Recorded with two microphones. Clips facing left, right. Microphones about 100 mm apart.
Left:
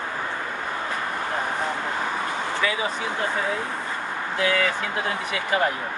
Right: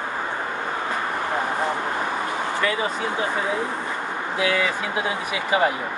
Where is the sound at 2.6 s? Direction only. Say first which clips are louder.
Right 2 dB; centre (ahead or behind).